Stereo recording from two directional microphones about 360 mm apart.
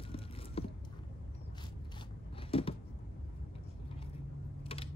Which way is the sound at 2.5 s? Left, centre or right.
Centre.